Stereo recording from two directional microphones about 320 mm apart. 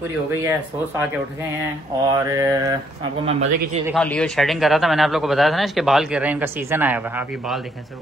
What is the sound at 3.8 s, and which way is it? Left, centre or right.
A man's voice, centre.